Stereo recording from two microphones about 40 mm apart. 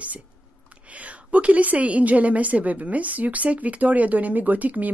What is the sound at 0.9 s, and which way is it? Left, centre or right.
A woman's voice, right.